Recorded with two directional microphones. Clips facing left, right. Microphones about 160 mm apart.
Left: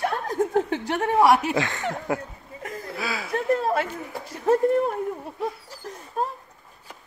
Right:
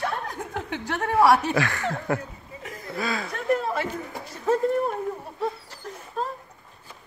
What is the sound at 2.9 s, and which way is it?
Speech, 5° left (ahead or behind).